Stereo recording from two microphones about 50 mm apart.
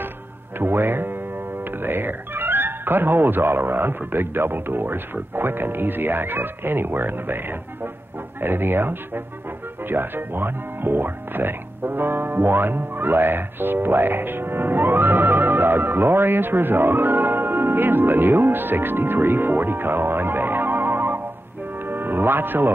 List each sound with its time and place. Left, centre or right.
0.6 s music: right
1.6 s speech: right
21.8 s music: right